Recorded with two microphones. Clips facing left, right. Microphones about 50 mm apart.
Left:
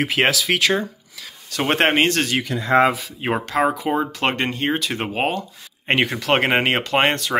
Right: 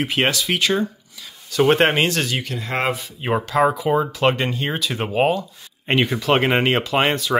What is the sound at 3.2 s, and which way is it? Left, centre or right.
Speech, left.